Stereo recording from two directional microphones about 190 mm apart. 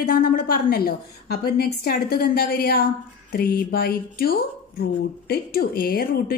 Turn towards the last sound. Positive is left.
turn(degrees=55)  # may be behind; listen again after turning